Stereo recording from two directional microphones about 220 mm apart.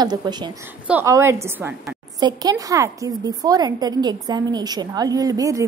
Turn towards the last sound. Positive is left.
turn(degrees=-15)  # may be behind; listen again after turning